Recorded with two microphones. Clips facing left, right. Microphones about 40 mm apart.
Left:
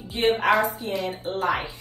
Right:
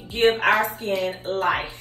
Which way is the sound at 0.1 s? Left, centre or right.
Right.